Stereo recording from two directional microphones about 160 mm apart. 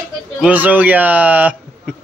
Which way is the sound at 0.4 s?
10° right (ahead or behind).